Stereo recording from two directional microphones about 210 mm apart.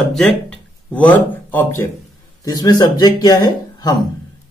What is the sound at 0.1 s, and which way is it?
Speech, centre (ahead or behind).